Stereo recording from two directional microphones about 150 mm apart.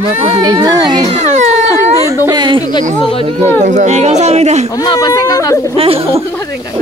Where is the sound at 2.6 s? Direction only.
30° left (ahead or behind).